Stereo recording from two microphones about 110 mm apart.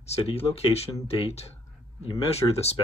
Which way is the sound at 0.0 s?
65° left (ahead or behind).